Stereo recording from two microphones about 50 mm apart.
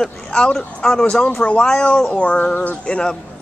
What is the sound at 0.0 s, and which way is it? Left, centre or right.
Speech, centre.